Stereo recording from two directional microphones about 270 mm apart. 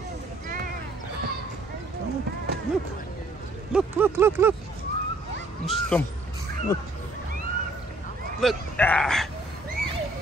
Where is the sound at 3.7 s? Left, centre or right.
Centre.